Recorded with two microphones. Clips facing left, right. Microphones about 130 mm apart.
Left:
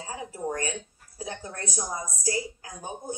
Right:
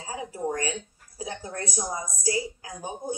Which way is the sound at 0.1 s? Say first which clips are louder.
Right 2 dB; 15° right (ahead or behind).